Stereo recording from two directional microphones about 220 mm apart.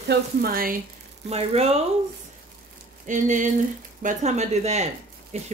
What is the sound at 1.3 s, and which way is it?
Speech, 30° right (ahead or behind).